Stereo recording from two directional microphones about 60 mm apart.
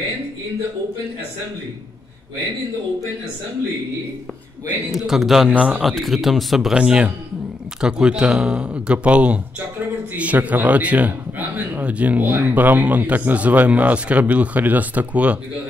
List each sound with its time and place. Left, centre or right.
4.9 s speech: centre
5.5 s speech: centre
5.9 s speech: centre
6.7 s a man's voice: centre